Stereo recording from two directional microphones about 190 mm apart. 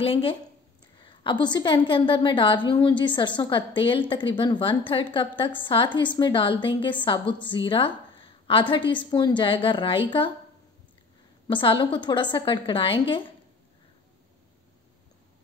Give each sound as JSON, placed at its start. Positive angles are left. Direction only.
{"t": 0.0, "sound": "a woman's voice", "side_deg": 30}
{"t": 11.4, "sound": "a woman's voice", "side_deg": 25}